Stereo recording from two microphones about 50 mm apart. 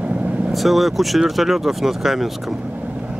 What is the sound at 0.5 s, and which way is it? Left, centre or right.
Speech, centre.